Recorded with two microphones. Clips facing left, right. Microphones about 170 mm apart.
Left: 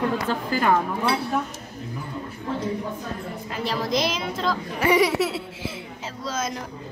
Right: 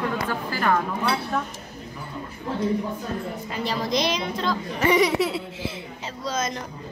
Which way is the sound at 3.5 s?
Centre (ahead or behind).